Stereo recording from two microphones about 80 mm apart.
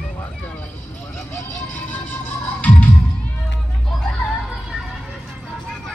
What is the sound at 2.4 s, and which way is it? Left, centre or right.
Music, left.